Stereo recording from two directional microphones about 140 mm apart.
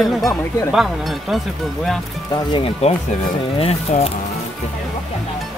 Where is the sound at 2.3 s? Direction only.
30° left (ahead or behind).